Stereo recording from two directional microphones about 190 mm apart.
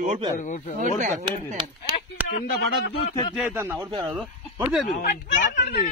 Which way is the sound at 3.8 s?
25° right (ahead or behind).